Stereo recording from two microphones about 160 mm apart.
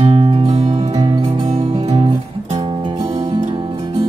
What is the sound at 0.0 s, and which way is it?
Music, 35° right (ahead or behind).